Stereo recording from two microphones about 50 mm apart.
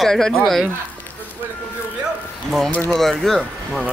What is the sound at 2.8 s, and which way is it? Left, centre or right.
Speech, centre.